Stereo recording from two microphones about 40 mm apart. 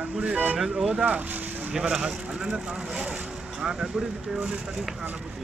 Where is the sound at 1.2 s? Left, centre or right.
Right.